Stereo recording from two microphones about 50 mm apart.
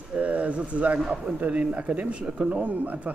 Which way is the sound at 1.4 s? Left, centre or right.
Right.